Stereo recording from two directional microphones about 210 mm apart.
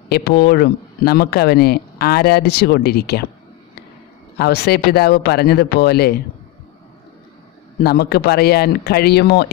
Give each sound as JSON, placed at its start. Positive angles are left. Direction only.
{"t": 0.1, "sound": "speech", "side_deg": 50}
{"t": 4.4, "sound": "speech", "side_deg": 50}
{"t": 7.8, "sound": "speech", "side_deg": 50}